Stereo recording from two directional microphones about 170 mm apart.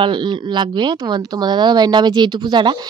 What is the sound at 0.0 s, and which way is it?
Speech, 25° right (ahead or behind).